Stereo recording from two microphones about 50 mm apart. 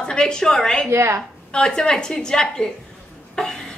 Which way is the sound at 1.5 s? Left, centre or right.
Centre.